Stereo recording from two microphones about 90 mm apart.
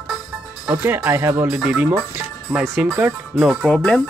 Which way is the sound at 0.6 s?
25° right (ahead or behind).